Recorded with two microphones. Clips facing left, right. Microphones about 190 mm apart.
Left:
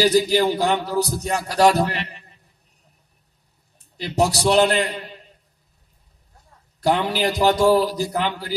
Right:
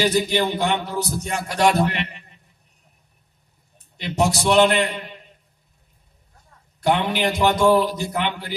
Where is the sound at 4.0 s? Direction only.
35° left (ahead or behind).